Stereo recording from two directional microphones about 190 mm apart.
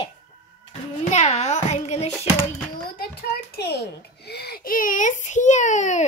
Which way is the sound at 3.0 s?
55° left (ahead or behind).